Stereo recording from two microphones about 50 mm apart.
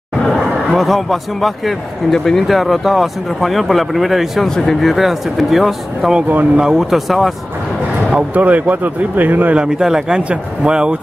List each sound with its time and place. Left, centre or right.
0.3 s speech: centre
4.6 s speech: centre
4.9 s speech: centre
8.4 s speech: right
9.6 s speech: centre